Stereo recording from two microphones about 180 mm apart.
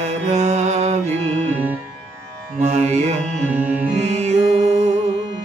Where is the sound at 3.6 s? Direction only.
5° right (ahead or behind).